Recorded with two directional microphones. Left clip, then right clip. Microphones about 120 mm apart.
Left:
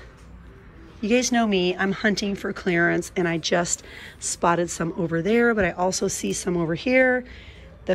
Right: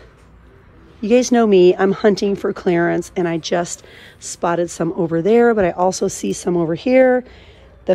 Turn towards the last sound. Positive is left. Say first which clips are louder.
# right 7 dB
turn(degrees=-30)  # may be behind; listen again after turning